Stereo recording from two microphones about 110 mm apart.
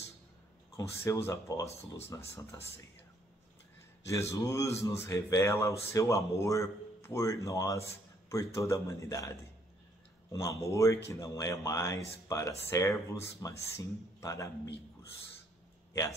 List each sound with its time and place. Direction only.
0.7 s speech: 25° left (ahead or behind)
4.3 s speech: 25° left (ahead or behind)
10.3 s speech: 30° left (ahead or behind)